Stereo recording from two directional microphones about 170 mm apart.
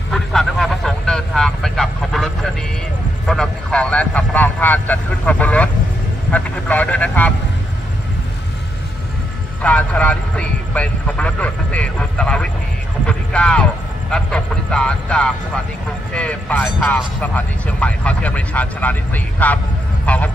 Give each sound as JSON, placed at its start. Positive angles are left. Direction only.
{"t": 0.1, "sound": "vehicle", "side_deg": 0}
{"t": 6.3, "sound": "speech", "side_deg": 10}
{"t": 9.6, "sound": "speech", "side_deg": 10}